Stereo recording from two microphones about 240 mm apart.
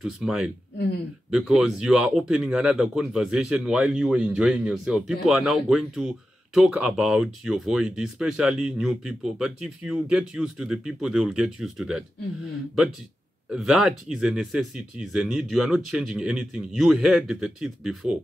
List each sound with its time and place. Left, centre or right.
0.0 s speech: centre
0.7 s speech: left
1.3 s speech: centre
13.5 s speech: centre